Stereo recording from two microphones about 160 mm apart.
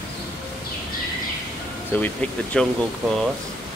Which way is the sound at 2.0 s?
10° left (ahead or behind).